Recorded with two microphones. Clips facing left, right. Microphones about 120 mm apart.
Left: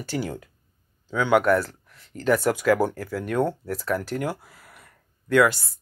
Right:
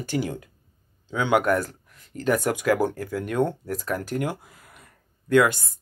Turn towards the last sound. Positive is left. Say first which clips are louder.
# even
turn(degrees=-20)  # may be behind; listen again after turning